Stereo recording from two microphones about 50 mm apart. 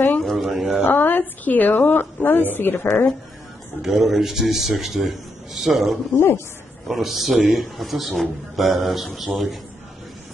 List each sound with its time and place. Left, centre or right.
0.2 s a sound: centre
0.8 s a woman's voice: left
3.8 s a man's voice: centre
6.1 s speech: left
6.9 s a man's voice: centre